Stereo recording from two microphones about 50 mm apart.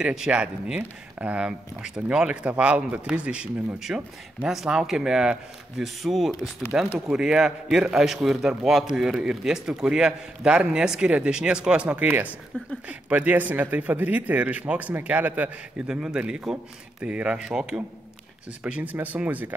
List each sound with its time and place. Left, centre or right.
0.0 s speech: centre
4.5 s a man's voice: centre
6.7 s a man's voice: right
15.9 s a man's voice: centre
18.7 s a man's voice: right